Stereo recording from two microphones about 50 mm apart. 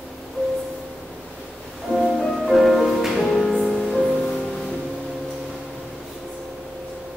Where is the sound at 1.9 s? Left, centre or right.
Centre.